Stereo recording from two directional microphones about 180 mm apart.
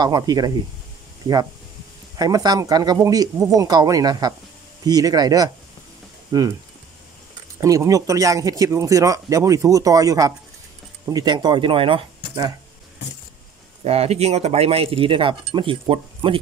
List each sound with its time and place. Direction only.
0.0 s speech: 20° right (ahead or behind)
7.6 s speech: 20° right (ahead or behind)
13.8 s speech: 35° right (ahead or behind)